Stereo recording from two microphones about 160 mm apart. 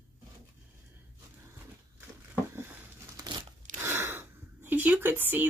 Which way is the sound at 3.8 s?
15° right (ahead or behind).